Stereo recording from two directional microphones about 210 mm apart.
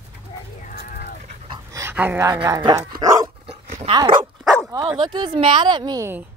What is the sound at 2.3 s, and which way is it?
Speech, 20° right (ahead or behind).